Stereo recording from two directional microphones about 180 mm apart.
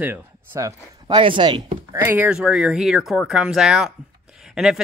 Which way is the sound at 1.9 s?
10° right (ahead or behind).